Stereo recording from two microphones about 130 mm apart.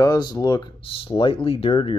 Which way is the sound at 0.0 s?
30° left (ahead or behind).